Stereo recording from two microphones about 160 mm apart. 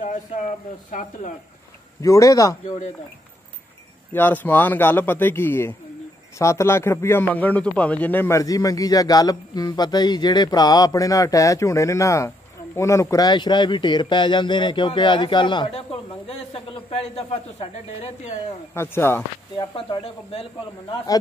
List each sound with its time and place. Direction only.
0.0 s a sound: 50° left (ahead or behind)
0.8 s speech: 55° left (ahead or behind)
2.0 s a man's voice: 20° left (ahead or behind)
4.1 s a man's voice: 10° left (ahead or behind); by 18.3 s 40° left (ahead or behind)
18.8 s speech: 15° left (ahead or behind)
19.5 s speech: 30° left (ahead or behind)